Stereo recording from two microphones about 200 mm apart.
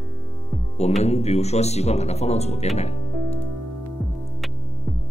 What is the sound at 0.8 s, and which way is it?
Speech, 35° left (ahead or behind).